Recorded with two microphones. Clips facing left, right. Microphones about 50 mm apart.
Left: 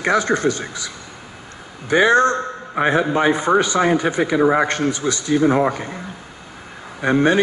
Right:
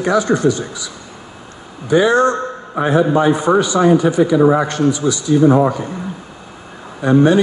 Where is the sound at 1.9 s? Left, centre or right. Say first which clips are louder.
Right 2 dB; left.